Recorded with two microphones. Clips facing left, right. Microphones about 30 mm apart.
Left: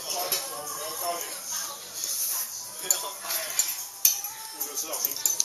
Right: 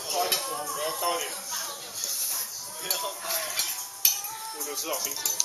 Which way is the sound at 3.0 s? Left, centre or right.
Centre.